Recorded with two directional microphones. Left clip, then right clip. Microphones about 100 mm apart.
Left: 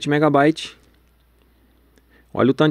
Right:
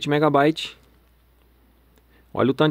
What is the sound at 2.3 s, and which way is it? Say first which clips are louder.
Speech: left 3 dB; 35° left (ahead or behind).